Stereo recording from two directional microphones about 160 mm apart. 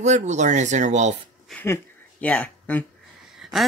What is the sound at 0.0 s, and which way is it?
Speech, 45° right (ahead or behind).